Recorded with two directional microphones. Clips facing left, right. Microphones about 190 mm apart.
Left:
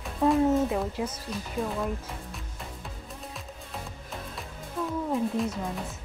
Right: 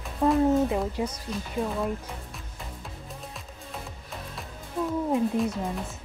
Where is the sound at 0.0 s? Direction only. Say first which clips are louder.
Right 1 dB; centre (ahead or behind).